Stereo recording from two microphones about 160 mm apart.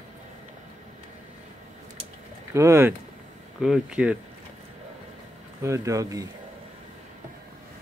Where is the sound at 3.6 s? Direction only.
5° right (ahead or behind).